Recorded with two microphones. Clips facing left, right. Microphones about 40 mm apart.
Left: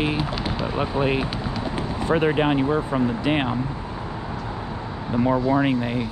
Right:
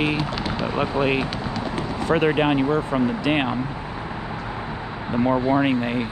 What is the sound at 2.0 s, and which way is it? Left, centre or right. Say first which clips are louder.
Speech: right 1 dB; right.